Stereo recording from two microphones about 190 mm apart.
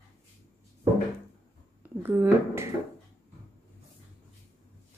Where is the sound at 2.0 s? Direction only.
10° right (ahead or behind).